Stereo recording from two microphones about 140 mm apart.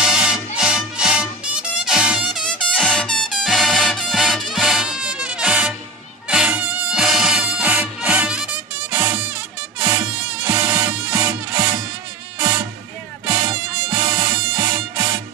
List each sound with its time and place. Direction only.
0.0 s music: 5° right (ahead or behind)
2.7 s music: 5° left (ahead or behind); by 11.3 s 10° right (ahead or behind)
12.4 s music: 35° right (ahead or behind)